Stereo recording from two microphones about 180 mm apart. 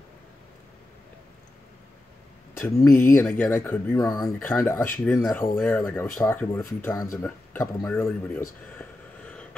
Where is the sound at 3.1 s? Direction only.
10° left (ahead or behind).